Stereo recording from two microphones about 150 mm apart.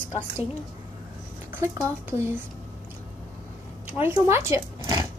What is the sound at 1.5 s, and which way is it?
Speech, 15° right (ahead or behind).